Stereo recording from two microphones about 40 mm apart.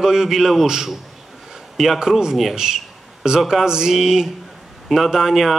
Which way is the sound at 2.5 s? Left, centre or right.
Centre.